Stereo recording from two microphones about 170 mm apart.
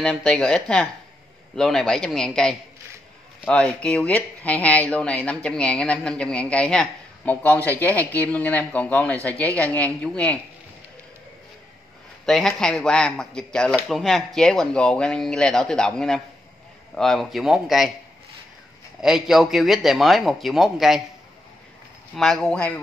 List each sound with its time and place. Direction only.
0.0 s speech: 5° left (ahead or behind)
12.3 s speech: centre (ahead or behind)
18.9 s speech: centre (ahead or behind)
22.1 s speech: centre (ahead or behind)